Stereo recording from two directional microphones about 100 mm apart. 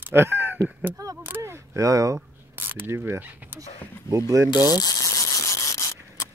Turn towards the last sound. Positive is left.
turn(degrees=35)  # may be behind; listen again after turning